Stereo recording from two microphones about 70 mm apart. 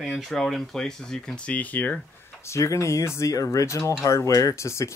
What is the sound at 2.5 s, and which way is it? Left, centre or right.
Speech, left.